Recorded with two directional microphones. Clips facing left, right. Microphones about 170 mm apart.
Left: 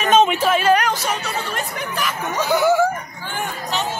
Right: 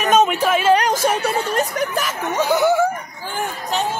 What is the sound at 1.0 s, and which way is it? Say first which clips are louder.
Speech: right 6 dB; 50° right (ahead or behind).